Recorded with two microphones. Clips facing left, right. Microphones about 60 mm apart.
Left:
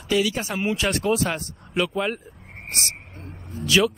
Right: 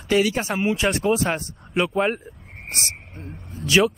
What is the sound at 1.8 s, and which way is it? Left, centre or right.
Speech, right.